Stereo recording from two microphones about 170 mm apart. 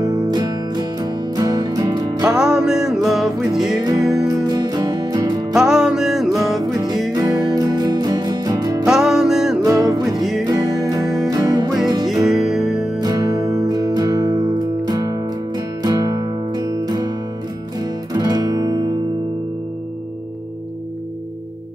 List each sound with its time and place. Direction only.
0.0 s music: 20° right (ahead or behind)
2.2 s music: 5° right (ahead or behind)
3.8 s music: 20° right (ahead or behind)
5.5 s music: 5° right (ahead or behind)
7.2 s music: 20° right (ahead or behind)
8.8 s music: 5° right (ahead or behind)
10.4 s music: 20° right (ahead or behind)
12.1 s music: centre (ahead or behind)
13.0 s music: 20° right (ahead or behind)